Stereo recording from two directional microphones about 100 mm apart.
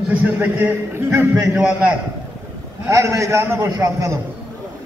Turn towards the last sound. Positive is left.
turn(degrees=-30)  # may be behind; listen again after turning